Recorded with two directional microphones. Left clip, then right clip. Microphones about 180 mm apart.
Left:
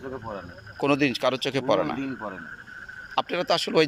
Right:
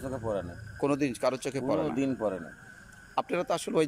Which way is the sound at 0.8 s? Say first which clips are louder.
Left 5 dB; 15° right (ahead or behind).